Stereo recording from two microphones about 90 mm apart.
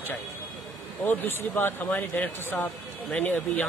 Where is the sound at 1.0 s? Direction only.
20° left (ahead or behind).